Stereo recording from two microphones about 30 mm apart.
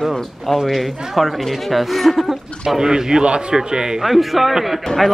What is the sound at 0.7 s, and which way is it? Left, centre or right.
Speech, centre.